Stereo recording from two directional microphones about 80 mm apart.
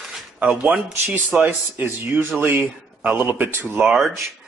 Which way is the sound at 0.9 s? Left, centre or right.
Right.